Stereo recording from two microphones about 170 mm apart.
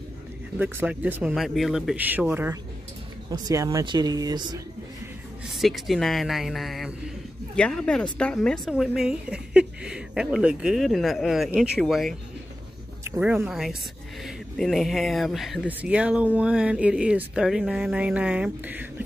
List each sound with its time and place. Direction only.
0.6 s speech: 10° right (ahead or behind)
5.6 s speech: centre (ahead or behind)
13.0 s speech: 10° right (ahead or behind)